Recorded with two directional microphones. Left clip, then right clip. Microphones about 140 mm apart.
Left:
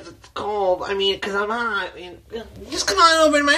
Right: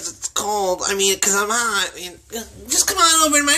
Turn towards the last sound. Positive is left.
turn(degrees=-10)  # may be behind; listen again after turning